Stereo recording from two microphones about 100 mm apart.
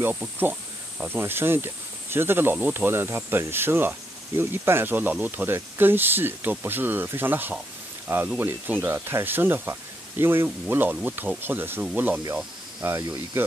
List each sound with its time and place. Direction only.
0.1 s speech: 15° right (ahead or behind)